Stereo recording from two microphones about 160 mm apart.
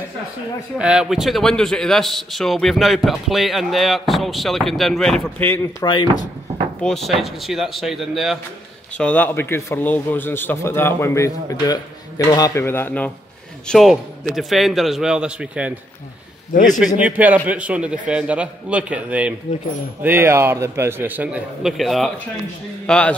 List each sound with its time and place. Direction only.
0.7 s a man's voice: 5° right (ahead or behind)
8.9 s a man's voice: 10° left (ahead or behind); by 15.7 s 5° right (ahead or behind)
16.5 s a man's voice: 55° left (ahead or behind)
16.8 s a man's voice: 10° right (ahead or behind)